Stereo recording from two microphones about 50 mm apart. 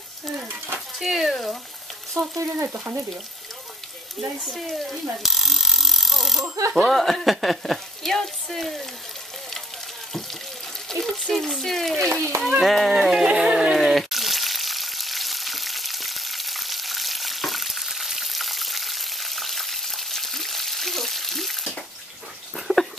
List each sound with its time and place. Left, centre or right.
0.9 s frying: centre
2.1 s frying: right
2.7 s speech: right
4.6 s a sound: centre
6.7 s speech: centre
10.9 s water: centre
11.3 s speech: centre
13.2 s a sound: centre
13.7 s frying: centre
22.7 s a sound: centre